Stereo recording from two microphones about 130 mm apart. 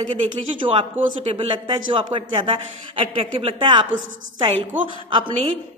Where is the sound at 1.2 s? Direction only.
45° right (ahead or behind).